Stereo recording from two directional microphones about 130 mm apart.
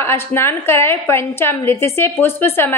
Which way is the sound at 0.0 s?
20° left (ahead or behind).